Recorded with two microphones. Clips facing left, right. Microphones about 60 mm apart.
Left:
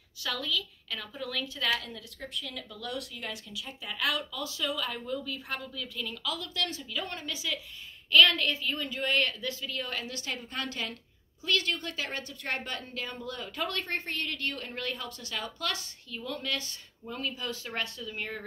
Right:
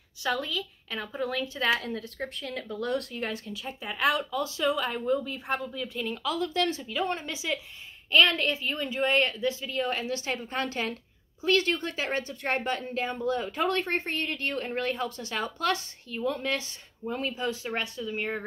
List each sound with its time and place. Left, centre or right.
0.2 s a woman's voice: right